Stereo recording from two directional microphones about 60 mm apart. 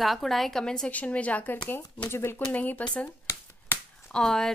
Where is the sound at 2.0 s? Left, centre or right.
Left.